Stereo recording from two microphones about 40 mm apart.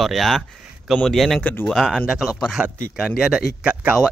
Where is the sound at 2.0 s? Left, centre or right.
Centre.